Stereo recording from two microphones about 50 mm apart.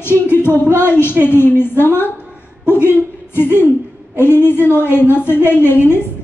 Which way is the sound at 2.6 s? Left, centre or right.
Left.